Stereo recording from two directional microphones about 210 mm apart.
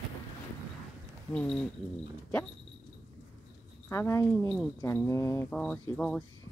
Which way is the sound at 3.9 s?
15° left (ahead or behind).